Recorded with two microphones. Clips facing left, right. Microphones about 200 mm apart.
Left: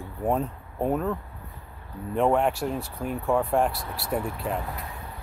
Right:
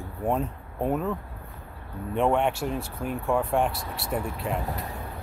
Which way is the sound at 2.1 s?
Centre (ahead or behind).